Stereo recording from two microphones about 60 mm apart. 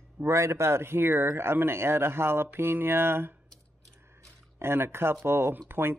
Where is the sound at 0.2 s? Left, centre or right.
Right.